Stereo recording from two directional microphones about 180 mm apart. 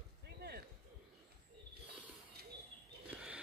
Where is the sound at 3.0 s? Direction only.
5° right (ahead or behind).